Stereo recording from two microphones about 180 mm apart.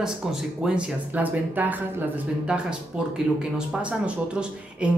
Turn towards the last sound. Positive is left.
turn(degrees=-5)  # may be behind; listen again after turning